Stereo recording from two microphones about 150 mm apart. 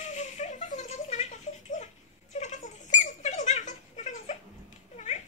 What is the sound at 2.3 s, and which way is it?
Rodents, 55° left (ahead or behind).